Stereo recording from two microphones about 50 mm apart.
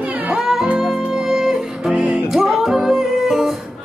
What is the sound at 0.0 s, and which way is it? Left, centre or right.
Music, right.